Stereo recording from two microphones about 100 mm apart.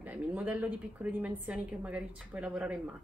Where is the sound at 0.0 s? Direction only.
15° right (ahead or behind).